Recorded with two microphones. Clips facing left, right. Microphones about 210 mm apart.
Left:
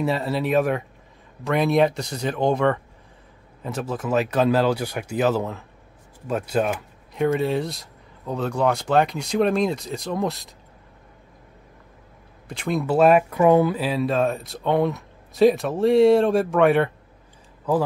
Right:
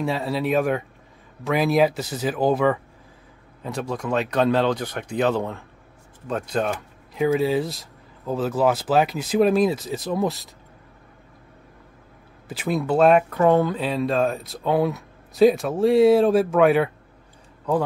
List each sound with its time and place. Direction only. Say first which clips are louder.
0.0 s speech: left 1 dB; centre (ahead or behind)
12.4 s speech: even; 5° right (ahead or behind)